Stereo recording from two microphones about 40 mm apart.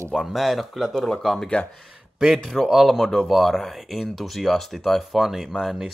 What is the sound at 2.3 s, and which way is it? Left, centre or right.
Speech, centre.